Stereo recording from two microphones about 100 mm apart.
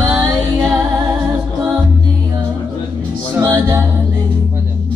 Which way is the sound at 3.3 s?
30° right (ahead or behind).